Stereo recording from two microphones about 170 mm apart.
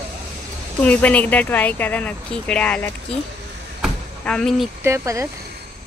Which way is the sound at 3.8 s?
5° left (ahead or behind).